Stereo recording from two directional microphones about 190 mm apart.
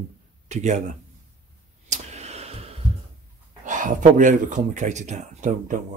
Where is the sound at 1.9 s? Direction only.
35° right (ahead or behind).